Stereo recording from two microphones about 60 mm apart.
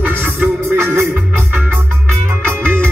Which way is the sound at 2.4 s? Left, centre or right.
Right.